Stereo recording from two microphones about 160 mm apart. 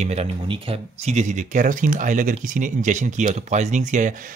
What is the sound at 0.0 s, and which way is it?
Speech, 40° right (ahead or behind).